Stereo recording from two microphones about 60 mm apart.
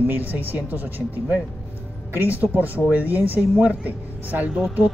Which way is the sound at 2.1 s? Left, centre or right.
Right.